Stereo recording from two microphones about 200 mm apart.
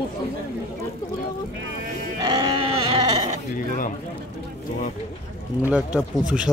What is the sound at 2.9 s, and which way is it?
Sheep, 30° right (ahead or behind).